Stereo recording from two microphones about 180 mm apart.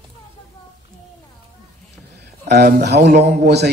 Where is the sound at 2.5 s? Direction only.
60° right (ahead or behind).